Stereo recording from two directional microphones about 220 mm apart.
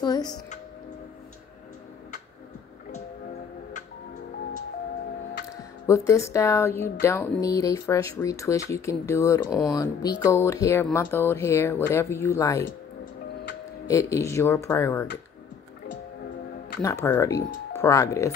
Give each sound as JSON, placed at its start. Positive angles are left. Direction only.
{"t": 0.0, "sound": "speech", "side_deg": 20}
{"t": 5.9, "sound": "speech", "side_deg": 15}
{"t": 13.8, "sound": "speech", "side_deg": 15}
{"t": 16.8, "sound": "speech", "side_deg": 15}